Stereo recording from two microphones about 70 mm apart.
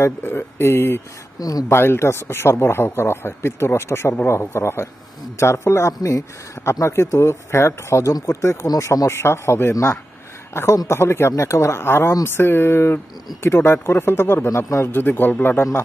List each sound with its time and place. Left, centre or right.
0.0 s a man's voice: left
1.4 s speech: left
1.7 s a man's voice: left